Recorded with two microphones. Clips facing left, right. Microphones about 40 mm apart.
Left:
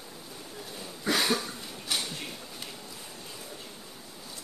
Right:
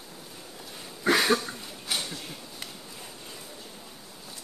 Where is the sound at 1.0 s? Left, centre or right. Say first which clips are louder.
Right 5 dB; right.